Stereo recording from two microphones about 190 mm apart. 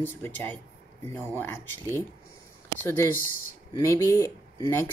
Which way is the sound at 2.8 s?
15° left (ahead or behind).